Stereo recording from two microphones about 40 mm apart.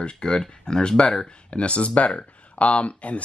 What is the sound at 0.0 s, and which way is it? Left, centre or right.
Speech, left.